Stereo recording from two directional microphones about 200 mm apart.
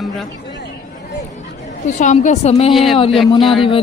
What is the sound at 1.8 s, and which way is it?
A woman's voice, 35° left (ahead or behind).